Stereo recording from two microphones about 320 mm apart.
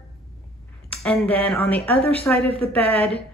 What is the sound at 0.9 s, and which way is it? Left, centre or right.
Speech, centre.